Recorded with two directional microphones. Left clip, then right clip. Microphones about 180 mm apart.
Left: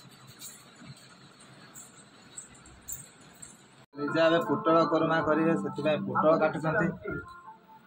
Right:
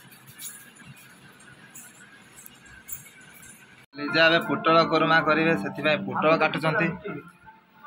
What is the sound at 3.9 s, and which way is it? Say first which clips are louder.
Speech: right 5 dB; 10° right (ahead or behind).